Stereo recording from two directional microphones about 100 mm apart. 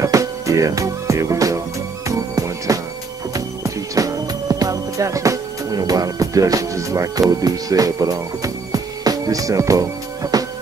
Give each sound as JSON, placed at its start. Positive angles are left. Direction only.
{"t": 0.0, "sound": "music", "side_deg": -35}